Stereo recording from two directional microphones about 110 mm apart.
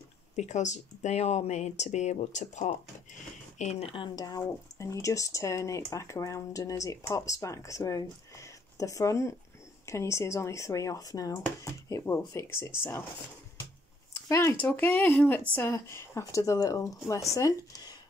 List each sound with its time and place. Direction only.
0.4 s speech: 90° left
3.9 s speech: 45° left (ahead or behind); by 13.0 s 20° left (ahead or behind)
14.1 s speech: 25° left (ahead or behind)